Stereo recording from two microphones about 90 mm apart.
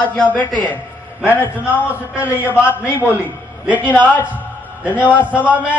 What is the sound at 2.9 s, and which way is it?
Speech, 25° left (ahead or behind).